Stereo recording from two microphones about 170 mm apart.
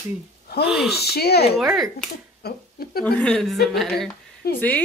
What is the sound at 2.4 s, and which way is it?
Speech, 60° left (ahead or behind).